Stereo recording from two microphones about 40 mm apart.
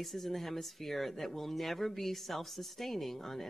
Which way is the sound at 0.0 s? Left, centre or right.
Centre.